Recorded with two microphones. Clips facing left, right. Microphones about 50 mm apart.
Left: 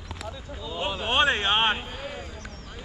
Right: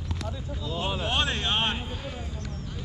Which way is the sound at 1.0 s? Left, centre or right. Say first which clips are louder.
Left 8 dB; left.